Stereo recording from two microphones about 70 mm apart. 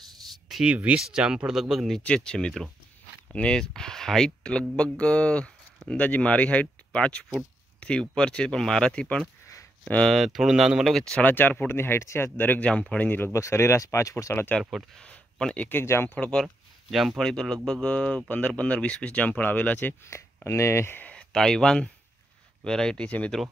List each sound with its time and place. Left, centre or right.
0.7 s speech: centre
2.0 s speech: centre
10.0 s speech: centre
11.1 s speech: centre
11.3 s speech: left
12.4 s speech: left
13.3 s speech: left
14.6 s speech: centre
15.0 s speech: centre
15.7 s speech: left
16.2 s speech: centre
16.9 s speech: centre; by 20.0 s left
20.1 s speech: left
21.0 s speech: centre